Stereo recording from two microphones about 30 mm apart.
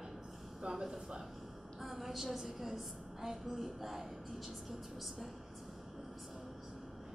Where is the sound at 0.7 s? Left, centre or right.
Centre.